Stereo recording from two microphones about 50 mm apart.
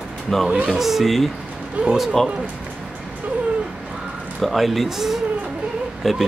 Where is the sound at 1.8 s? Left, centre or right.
Right.